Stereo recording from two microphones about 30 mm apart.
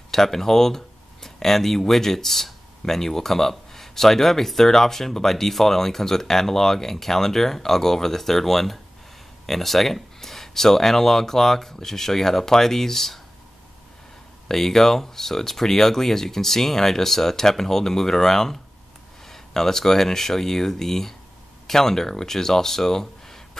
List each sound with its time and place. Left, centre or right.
0.1 s speech: centre
14.5 s speech: centre